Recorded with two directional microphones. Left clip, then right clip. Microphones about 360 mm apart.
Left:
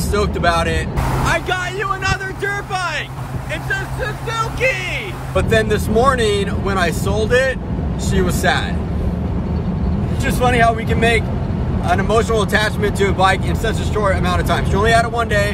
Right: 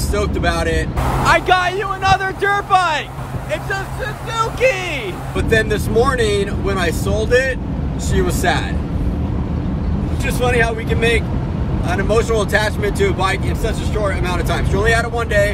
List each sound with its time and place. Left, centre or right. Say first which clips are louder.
0.1 s speech: left 3 dB; centre
1.2 s speech: right 7 dB; right
4.4 s speech: right 3 dB; centre
5.3 s speech: left 1 dB; centre
10.2 s speech: left 2 dB; centre